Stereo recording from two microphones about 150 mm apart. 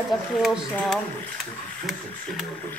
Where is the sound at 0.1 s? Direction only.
Centre (ahead or behind).